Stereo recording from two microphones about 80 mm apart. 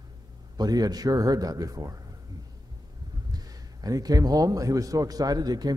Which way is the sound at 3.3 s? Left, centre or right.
Right.